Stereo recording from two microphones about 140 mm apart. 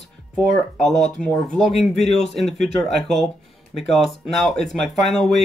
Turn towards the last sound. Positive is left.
turn(degrees=0)  # may be behind; listen again after turning